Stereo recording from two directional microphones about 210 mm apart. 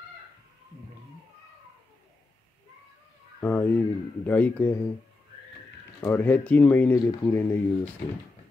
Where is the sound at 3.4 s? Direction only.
10° left (ahead or behind).